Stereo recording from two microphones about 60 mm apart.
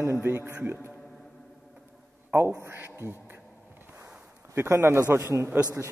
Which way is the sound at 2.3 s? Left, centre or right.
Right.